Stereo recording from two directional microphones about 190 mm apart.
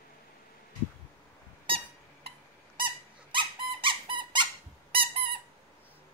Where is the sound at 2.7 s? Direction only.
25° right (ahead or behind).